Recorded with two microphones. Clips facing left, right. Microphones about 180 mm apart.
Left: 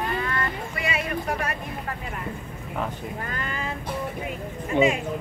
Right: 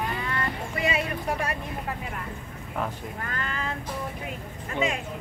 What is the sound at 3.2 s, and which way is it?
Speech, 15° left (ahead or behind).